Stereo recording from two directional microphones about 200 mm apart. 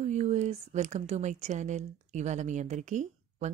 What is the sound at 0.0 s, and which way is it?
Speech, 35° right (ahead or behind).